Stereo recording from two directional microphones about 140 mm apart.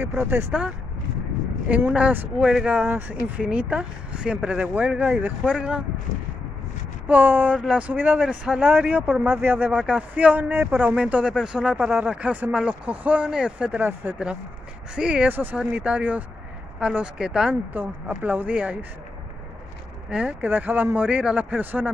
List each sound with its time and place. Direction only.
0.0 s speech: 15° right (ahead or behind)
7.1 s speech: 15° right (ahead or behind)
20.1 s speech: 10° right (ahead or behind)